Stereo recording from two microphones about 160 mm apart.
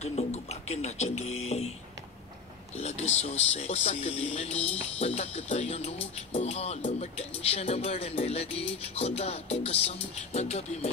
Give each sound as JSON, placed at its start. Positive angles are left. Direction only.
{"t": 0.0, "sound": "music", "side_deg": 40}
{"t": 2.8, "sound": "speech", "side_deg": 40}